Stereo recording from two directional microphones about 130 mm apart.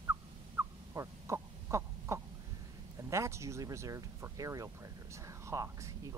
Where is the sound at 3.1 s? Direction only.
20° right (ahead or behind).